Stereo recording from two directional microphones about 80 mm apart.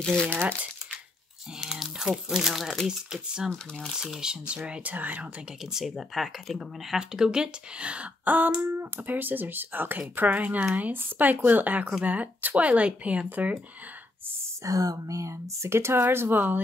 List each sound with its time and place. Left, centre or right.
0.0 s speech: centre
1.6 s speech: centre
5.7 s speech: centre
14.6 s speech: right